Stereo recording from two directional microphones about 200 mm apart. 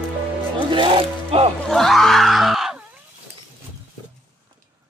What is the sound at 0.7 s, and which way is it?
Zipper, 25° right (ahead or behind).